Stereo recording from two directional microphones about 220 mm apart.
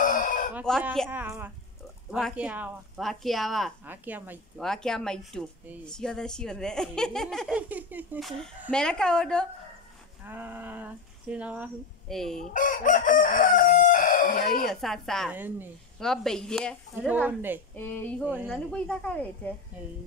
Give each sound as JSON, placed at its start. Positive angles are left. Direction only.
{"t": 0.0, "sound": "chicken", "side_deg": 35}
{"t": 0.6, "sound": "speech", "side_deg": -5}
{"t": 1.1, "sound": "speech", "side_deg": -10}
{"t": 4.6, "sound": "speech", "side_deg": 5}
{"t": 10.2, "sound": "speech", "side_deg": -10}
{"t": 12.5, "sound": "chicken", "side_deg": 35}
{"t": 14.7, "sound": "speech", "side_deg": 0}
{"t": 16.0, "sound": "speech", "side_deg": 0}
{"t": 18.5, "sound": "speech", "side_deg": 5}
{"t": 19.7, "sound": "speech", "side_deg": -5}